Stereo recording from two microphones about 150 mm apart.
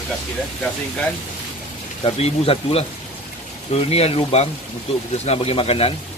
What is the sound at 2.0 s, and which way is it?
Speech, 40° left (ahead or behind).